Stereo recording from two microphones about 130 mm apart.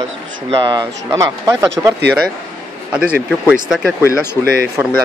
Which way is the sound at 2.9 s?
10° right (ahead or behind).